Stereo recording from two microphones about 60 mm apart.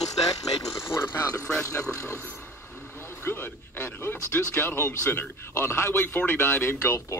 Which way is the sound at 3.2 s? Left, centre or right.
Left.